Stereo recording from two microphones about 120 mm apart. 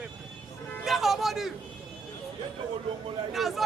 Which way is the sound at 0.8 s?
Centre (ahead or behind).